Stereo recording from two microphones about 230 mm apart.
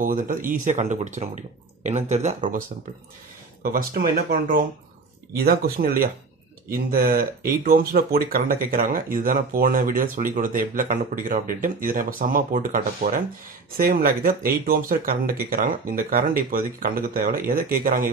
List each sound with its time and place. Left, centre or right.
0.0 s speech: right
3.6 s speech: right